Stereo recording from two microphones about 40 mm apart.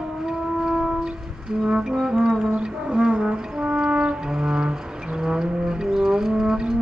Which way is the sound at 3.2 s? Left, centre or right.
Right.